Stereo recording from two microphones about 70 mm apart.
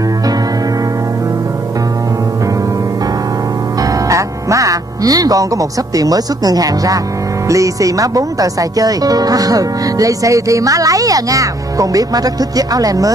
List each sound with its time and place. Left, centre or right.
3.8 s music: right
7.4 s speech: right